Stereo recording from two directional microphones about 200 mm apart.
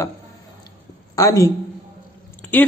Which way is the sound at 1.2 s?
15° left (ahead or behind).